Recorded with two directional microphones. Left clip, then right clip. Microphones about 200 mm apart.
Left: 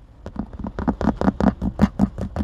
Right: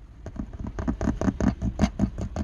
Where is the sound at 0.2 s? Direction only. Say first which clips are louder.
Left 6 dB; 20° left (ahead or behind).